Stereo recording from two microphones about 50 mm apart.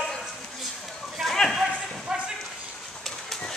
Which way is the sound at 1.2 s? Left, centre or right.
Centre.